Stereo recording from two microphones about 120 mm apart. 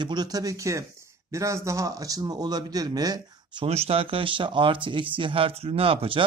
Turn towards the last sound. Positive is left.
turn(degrees=-50)  # may be behind; listen again after turning